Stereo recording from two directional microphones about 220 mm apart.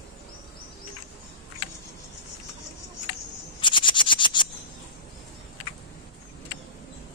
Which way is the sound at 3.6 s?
20° left (ahead or behind).